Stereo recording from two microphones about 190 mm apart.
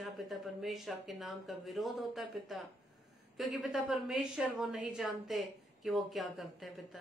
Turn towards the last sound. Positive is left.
turn(degrees=0)  # may be behind; listen again after turning